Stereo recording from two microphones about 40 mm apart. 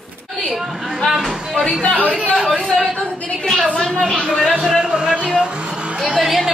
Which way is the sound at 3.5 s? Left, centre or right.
Centre.